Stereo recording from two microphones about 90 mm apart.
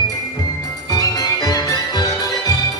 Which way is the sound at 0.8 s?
45° left (ahead or behind).